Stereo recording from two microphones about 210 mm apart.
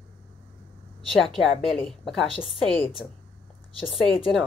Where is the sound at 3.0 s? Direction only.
Centre (ahead or behind).